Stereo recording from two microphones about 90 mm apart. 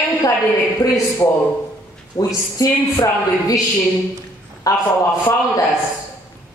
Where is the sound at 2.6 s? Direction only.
40° left (ahead or behind).